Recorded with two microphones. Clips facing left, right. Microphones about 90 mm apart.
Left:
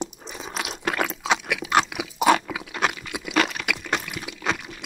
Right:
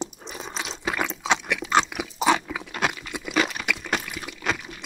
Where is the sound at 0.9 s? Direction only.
Centre (ahead or behind).